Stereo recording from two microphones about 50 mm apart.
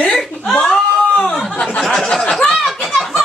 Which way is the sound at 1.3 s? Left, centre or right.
Centre.